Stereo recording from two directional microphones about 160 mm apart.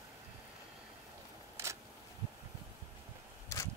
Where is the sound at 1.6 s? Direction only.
20° right (ahead or behind).